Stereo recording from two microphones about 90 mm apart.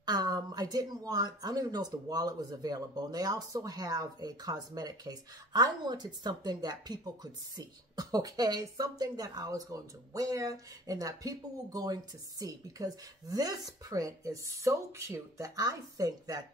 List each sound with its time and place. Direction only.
0.0 s speech: 50° right (ahead or behind)